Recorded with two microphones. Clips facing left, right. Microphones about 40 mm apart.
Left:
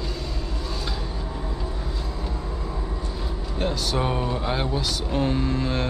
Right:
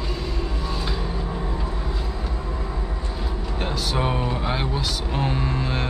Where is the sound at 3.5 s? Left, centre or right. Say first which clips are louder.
Left 1 dB; centre.